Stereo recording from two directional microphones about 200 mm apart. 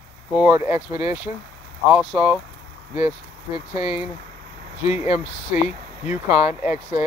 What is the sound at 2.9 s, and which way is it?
Speech, 25° left (ahead or behind).